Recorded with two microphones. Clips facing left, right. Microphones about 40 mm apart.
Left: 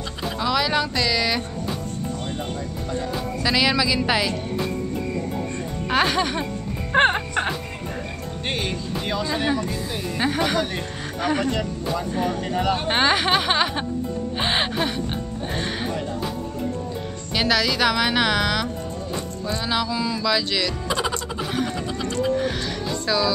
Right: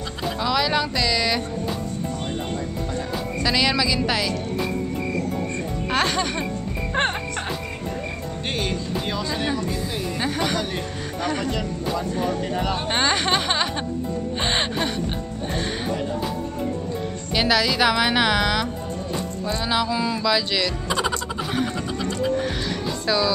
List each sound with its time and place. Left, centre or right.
0.4 s speech: centre
3.4 s speech: centre
5.9 s speech: centre
6.9 s music: left
8.6 s speech: centre
17.4 s speech: centre
19.4 s a sound: centre
20.2 s speech: centre
23.0 s speech: centre